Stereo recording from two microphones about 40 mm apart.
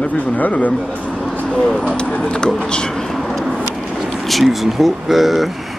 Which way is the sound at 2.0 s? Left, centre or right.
Left.